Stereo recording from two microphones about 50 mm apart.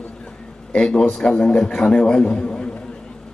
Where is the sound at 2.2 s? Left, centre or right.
Left.